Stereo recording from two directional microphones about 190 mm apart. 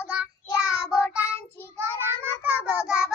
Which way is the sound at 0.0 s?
5° right (ahead or behind).